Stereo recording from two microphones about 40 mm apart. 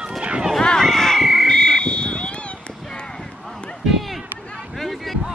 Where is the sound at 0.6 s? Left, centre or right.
Centre.